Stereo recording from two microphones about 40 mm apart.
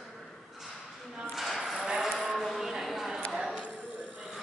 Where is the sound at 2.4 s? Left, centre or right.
Centre.